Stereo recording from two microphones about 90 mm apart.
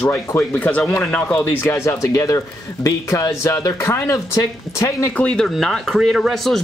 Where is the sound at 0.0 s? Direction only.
30° left (ahead or behind).